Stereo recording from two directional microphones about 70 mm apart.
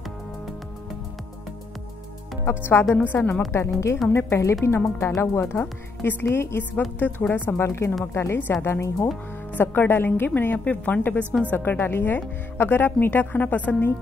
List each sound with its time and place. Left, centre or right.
2.4 s a woman's voice: left
3.5 s a woman's voice: left
8.4 s a woman's voice: left
8.6 s a woman's voice: left